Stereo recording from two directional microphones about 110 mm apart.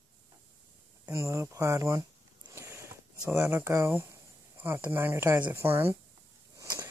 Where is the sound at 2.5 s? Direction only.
25° right (ahead or behind).